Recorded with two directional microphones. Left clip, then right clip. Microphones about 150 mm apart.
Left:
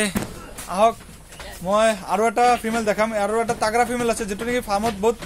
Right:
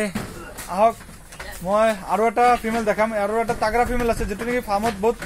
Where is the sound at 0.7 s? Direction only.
15° left (ahead or behind).